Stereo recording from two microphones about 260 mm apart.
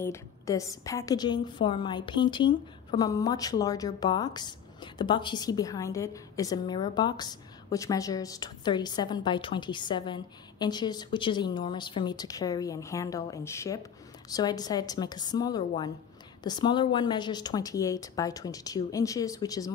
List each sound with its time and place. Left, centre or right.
0.0 s a woman's voice: centre